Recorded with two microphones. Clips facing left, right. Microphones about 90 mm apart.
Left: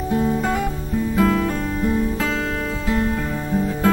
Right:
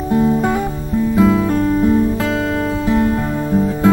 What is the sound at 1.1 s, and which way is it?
Music, 15° right (ahead or behind).